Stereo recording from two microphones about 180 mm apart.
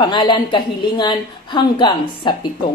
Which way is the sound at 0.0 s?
25° left (ahead or behind).